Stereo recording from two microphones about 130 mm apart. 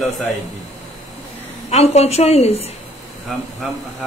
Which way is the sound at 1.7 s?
55° left (ahead or behind).